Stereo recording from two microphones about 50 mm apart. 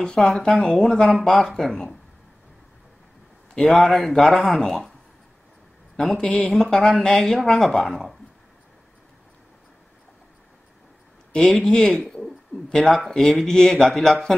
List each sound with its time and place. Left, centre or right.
0.0 s speech: centre
3.5 s speech: centre
5.9 s a man's voice: centre
6.2 s speech: left
6.5 s speech: centre
11.7 s speech: centre
12.1 s bird: centre
13.1 s speech: centre